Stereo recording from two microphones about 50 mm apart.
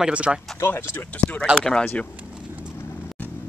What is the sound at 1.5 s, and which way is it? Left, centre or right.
Speech, centre.